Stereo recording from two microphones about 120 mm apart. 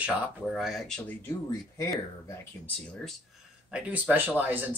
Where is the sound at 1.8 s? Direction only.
25° left (ahead or behind).